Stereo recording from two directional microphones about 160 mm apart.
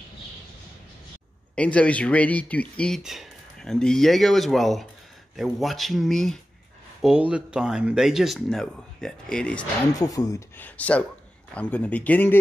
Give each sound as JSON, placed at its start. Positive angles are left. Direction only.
{"t": 1.5, "sound": "speech", "side_deg": 5}
{"t": 9.9, "sound": "speech", "side_deg": 20}
{"t": 10.8, "sound": "speech", "side_deg": 10}